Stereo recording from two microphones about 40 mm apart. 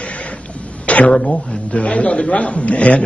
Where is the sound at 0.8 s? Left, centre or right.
Left.